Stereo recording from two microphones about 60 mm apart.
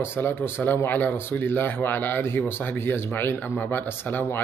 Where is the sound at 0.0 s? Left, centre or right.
Left.